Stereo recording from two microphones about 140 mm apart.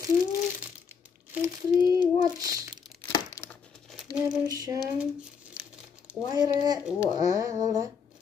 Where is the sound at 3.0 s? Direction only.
25° left (ahead or behind).